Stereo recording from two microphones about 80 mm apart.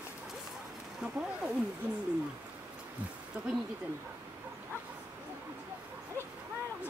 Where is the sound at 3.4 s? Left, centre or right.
Centre.